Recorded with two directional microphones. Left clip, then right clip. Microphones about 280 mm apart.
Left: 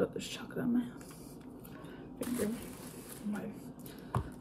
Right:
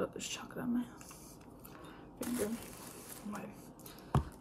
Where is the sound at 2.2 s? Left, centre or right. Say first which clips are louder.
Left 1 dB; right.